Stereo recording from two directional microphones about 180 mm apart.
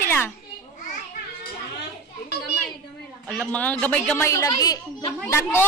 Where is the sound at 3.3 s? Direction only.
5° left (ahead or behind).